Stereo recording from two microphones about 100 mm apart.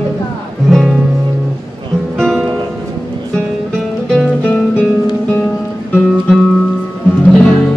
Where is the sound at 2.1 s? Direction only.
5° left (ahead or behind).